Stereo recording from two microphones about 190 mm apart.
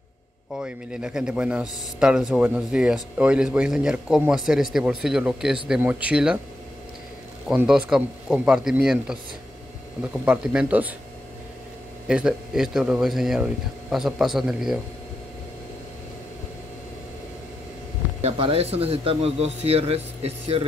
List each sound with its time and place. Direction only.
0.6 s speech: 5° right (ahead or behind)
7.4 s speech: 5° right (ahead or behind)
10.2 s speech: 5° right (ahead or behind)
12.1 s speech: 5° right (ahead or behind)
18.2 s speech: 30° right (ahead or behind)